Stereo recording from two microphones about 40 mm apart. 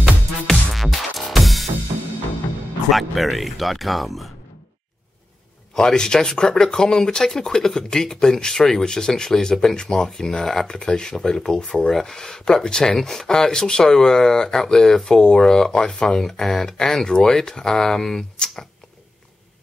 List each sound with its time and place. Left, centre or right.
0.7 s music: centre
2.9 s speech: centre
5.8 s speech: centre
10.7 s speech: centre